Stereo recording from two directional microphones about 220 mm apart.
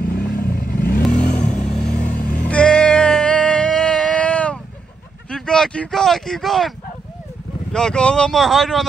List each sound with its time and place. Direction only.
0.0 s vehicle: 45° left (ahead or behind)
1.6 s vehicle: 5° left (ahead or behind)
2.0 s vehicle: 35° left (ahead or behind)
2.4 s music: 5° left (ahead or behind)
5.3 s speech: 5° left (ahead or behind)
7.7 s speech: 5° left (ahead or behind)